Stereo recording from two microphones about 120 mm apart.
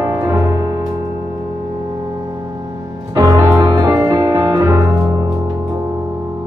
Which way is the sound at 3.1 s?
30° right (ahead or behind).